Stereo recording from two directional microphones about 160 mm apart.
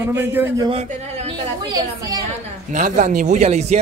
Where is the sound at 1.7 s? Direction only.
25° right (ahead or behind).